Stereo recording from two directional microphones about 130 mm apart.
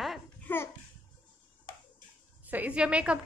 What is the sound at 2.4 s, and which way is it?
Speech, 10° right (ahead or behind).